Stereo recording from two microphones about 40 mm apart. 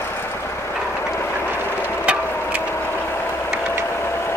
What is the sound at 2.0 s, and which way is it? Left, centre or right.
Vehicle, right.